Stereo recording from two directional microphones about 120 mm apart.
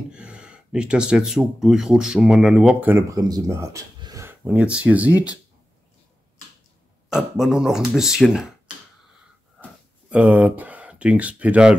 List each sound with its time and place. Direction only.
0.1 s speech: 10° right (ahead or behind); by 3.8 s 25° right (ahead or behind)
4.0 s a sound: 30° right (ahead or behind)
4.3 s speech: 10° right (ahead or behind)
7.1 s speech: 5° right (ahead or behind)
10.0 s speech: 10° right (ahead or behind)